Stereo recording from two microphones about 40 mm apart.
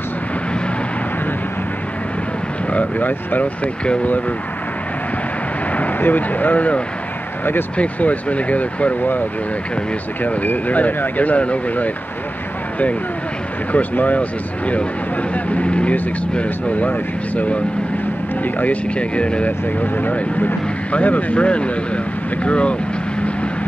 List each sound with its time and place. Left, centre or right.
2.7 s speech: left
5.8 s speech: left
10.2 s speech: left
13.7 s speech: left
15.3 s speech: left
18.9 s speech: left
19.8 s speech: left